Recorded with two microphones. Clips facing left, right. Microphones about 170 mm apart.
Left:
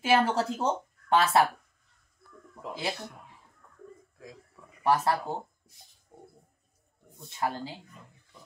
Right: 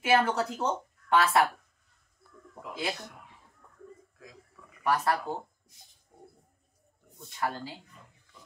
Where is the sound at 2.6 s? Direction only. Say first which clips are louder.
Left 1 dB; 30° left (ahead or behind).